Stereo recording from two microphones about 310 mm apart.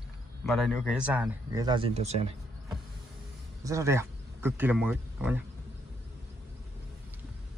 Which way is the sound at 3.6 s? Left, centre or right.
Centre.